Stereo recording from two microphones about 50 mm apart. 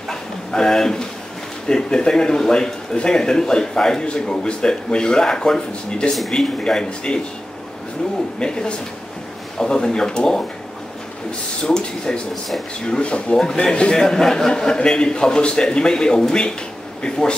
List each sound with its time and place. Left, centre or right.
0.1 s a sound: centre
1.7 s a man's voice: centre
8.4 s a man's voice: centre
11.6 s a man's voice: centre
13.4 s a man's voice: centre